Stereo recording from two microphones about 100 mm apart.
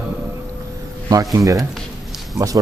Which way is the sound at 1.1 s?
35° right (ahead or behind).